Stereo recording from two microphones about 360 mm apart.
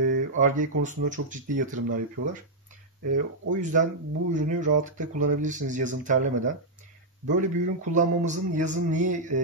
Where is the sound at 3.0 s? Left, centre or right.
Right.